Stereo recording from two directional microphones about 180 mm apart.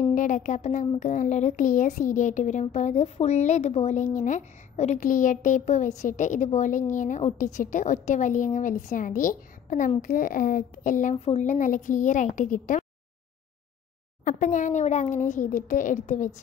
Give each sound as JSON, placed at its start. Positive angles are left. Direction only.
{"t": 0.1, "sound": "speech", "side_deg": 45}
{"t": 14.2, "sound": "speech", "side_deg": 45}